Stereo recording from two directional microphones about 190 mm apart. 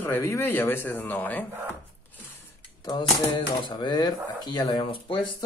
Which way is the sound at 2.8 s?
25° left (ahead or behind).